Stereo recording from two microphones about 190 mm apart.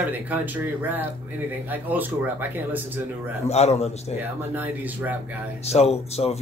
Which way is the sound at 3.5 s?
35° left (ahead or behind).